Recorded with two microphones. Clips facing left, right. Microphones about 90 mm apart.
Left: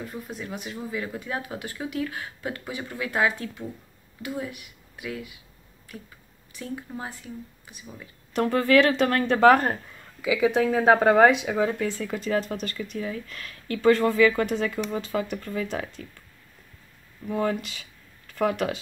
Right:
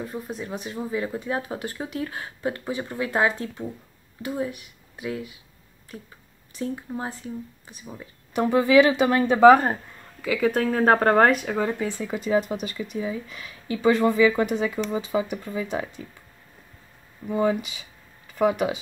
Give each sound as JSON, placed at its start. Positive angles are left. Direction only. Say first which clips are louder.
{"t": 0.0, "sound": "speech", "louder": "right 3 dB", "side_deg": -25}
{"t": 8.3, "sound": "speech", "louder": "right 1 dB", "side_deg": -5}
{"t": 10.2, "sound": "speech", "louder": "left 1 dB", "side_deg": 10}
{"t": 17.3, "sound": "speech", "louder": "right 3 dB", "side_deg": -5}